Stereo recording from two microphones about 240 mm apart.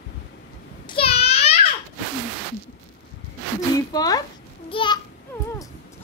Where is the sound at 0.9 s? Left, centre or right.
Left.